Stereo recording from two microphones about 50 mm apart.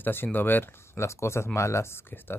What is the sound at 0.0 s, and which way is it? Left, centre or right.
Speech, left.